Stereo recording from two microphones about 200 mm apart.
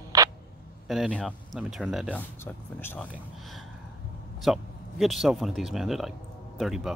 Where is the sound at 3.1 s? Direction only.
Centre (ahead or behind).